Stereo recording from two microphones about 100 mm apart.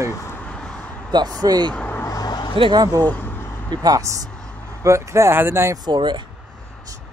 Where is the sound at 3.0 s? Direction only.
15° left (ahead or behind).